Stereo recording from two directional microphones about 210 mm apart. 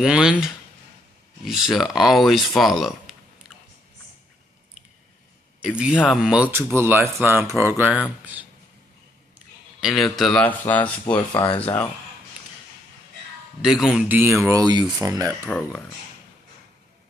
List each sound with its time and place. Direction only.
0.0 s speech: 5° right (ahead or behind)
5.6 s speech: 5° right (ahead or behind)
7.2 s speech: centre (ahead or behind)
7.4 s speech: 10° right (ahead or behind)
9.8 s speech: centre (ahead or behind)
11.4 s speech: 25° left (ahead or behind)
13.6 s speech: centre (ahead or behind)
15.4 s speech: centre (ahead or behind)